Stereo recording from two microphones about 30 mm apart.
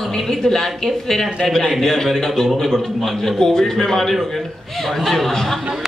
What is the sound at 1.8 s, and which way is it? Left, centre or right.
A woman's voice, centre.